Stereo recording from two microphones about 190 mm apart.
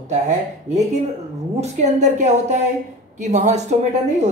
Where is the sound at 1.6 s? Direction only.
40° right (ahead or behind).